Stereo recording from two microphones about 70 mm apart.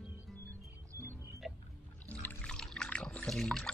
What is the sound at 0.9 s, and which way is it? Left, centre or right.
Music, right.